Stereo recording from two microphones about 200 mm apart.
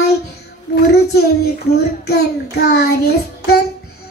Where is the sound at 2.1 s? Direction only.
55° left (ahead or behind).